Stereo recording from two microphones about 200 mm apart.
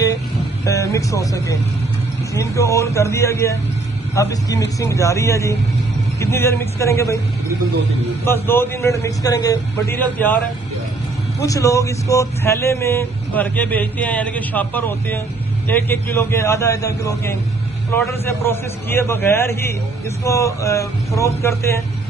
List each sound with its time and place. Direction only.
0.7 s speech: 15° left (ahead or behind)
8.3 s speech: 10° left (ahead or behind)
11.4 s speech: 15° left (ahead or behind)